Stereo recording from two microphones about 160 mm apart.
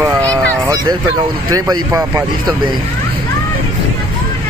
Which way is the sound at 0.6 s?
25° right (ahead or behind).